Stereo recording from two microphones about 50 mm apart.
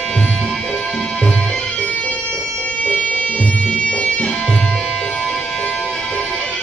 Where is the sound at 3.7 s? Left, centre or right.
Centre.